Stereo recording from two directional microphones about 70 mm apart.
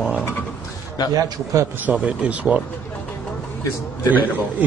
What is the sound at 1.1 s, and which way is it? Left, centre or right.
Speech, right.